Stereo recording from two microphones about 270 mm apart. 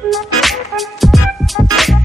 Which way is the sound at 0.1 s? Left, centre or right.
Centre.